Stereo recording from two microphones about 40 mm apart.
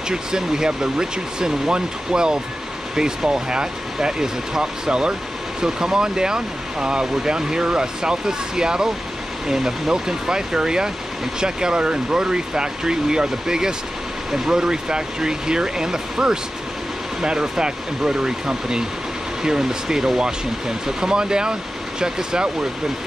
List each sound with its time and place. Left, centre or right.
0.1 s speech: centre